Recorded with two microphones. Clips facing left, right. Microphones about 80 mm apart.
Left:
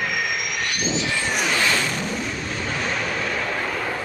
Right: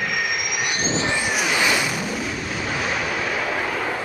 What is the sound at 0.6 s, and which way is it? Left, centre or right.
Vehicle, right.